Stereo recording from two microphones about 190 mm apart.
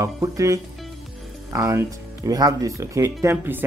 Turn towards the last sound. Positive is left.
turn(degrees=-15)  # may be behind; listen again after turning